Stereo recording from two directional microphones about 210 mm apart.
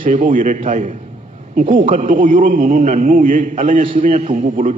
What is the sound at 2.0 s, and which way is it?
A man's voice, 40° right (ahead or behind).